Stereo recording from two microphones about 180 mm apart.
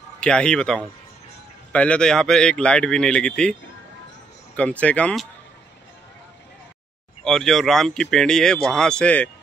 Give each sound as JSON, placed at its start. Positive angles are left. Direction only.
{"t": 0.2, "sound": "speech", "side_deg": 5}
{"t": 4.6, "sound": "speech", "side_deg": 5}
{"t": 7.2, "sound": "speech", "side_deg": 0}